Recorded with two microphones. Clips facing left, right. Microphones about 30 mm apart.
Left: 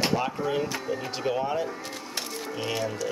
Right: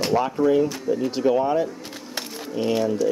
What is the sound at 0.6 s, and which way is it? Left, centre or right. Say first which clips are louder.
Speech: right 7 dB; centre.